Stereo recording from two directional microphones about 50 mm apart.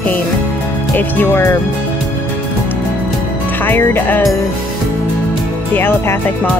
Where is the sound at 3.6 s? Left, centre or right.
Left.